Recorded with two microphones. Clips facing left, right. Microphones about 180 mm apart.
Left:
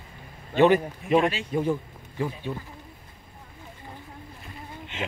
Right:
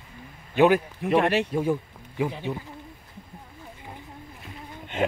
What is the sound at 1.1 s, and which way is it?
Speech, 65° right (ahead or behind).